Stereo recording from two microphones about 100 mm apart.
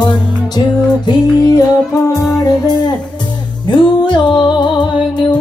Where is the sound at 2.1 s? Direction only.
40° left (ahead or behind).